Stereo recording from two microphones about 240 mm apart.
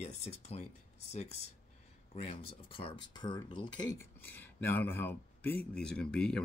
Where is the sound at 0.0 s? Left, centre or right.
Left.